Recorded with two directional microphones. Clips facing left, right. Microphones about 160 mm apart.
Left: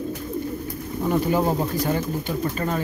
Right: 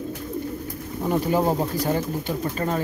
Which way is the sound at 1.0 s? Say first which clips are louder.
Even; 35° right (ahead or behind).